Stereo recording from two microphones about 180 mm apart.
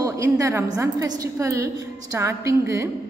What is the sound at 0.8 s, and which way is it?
Speech, 20° right (ahead or behind).